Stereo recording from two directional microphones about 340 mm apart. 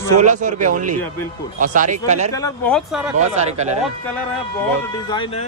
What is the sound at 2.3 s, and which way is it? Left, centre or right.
Speech, centre.